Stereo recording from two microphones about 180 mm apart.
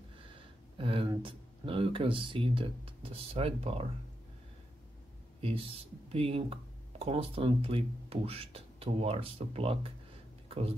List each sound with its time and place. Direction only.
0.7 s speech: 30° right (ahead or behind)
5.4 s speech: 30° right (ahead or behind)